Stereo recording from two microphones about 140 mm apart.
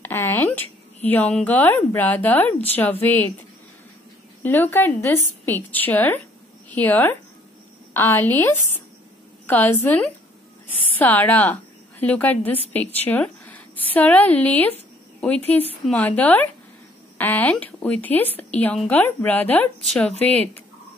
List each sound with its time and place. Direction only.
0.0 s a woman's voice: 15° left (ahead or behind)
4.4 s a woman's voice: 15° left (ahead or behind)